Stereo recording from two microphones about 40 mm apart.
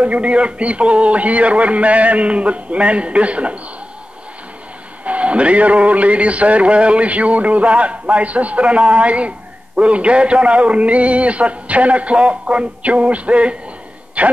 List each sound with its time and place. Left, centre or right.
0.0 s music: right
5.0 s music: right
14.2 s a man's voice: right